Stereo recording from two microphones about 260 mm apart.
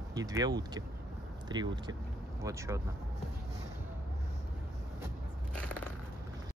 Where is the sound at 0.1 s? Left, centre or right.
Centre.